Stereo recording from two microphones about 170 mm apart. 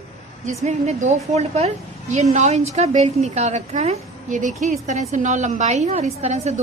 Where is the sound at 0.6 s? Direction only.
40° right (ahead or behind).